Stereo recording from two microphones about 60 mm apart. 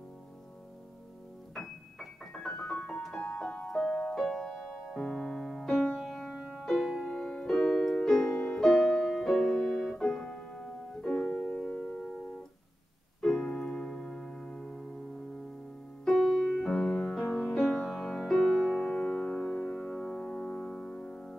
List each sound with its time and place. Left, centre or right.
1.5 s keyboard: centre
2.3 s music: centre
4.9 s music: centre
10.2 s piano: centre
13.2 s keyboard: centre
13.5 s music: centre
16.1 s music: centre
16.5 s music: centre
17.2 s music: left
17.6 s music: centre
18.2 s music: centre
18.9 s music: centre